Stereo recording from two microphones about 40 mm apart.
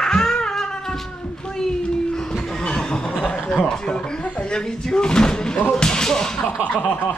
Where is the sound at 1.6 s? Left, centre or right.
Centre.